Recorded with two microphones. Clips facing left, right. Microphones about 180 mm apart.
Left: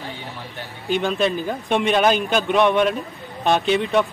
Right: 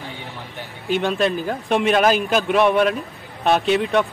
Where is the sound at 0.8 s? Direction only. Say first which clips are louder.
Right 1 dB; centre (ahead or behind).